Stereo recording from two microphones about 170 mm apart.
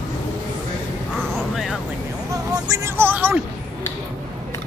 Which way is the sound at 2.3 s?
20° right (ahead or behind).